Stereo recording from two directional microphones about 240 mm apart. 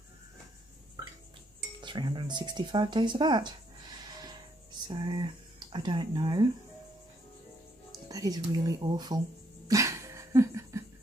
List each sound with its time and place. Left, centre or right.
1.8 s speech: centre
8.1 s speech: centre
9.7 s a sound: centre